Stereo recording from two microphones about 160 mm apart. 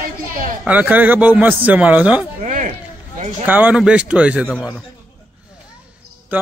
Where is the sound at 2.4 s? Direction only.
50° right (ahead or behind).